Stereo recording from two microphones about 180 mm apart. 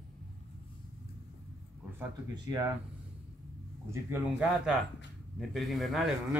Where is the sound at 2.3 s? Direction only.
20° right (ahead or behind).